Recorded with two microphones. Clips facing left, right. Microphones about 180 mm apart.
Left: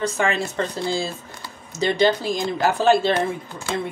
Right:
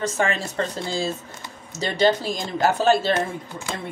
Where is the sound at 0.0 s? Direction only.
40° right (ahead or behind).